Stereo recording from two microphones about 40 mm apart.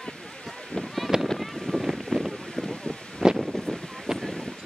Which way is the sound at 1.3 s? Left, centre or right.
Centre.